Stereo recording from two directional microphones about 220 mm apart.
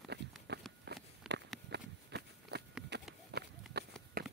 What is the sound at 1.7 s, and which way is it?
Run, 50° right (ahead or behind).